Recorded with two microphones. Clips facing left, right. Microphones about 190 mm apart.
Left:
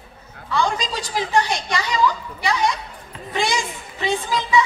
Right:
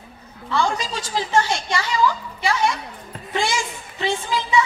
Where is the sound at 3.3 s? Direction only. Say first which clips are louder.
Even; 20° left (ahead or behind).